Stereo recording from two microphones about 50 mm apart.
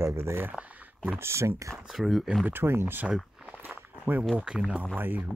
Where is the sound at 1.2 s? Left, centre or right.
Right.